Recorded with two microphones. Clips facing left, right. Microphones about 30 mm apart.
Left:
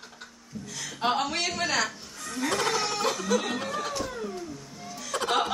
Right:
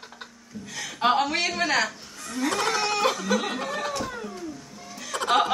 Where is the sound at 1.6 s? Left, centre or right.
Centre.